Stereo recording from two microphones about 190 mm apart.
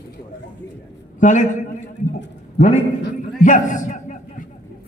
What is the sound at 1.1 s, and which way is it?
Speech, 40° left (ahead or behind).